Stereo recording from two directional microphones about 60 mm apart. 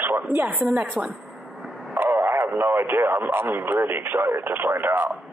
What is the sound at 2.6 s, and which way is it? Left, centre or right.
Speech, right.